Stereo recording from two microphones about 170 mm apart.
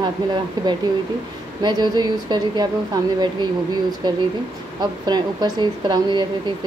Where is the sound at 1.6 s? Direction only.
25° right (ahead or behind).